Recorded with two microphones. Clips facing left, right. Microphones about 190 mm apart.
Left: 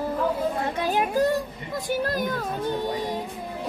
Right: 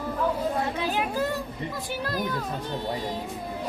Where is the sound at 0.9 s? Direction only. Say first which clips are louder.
Left 8 dB; 50° left (ahead or behind).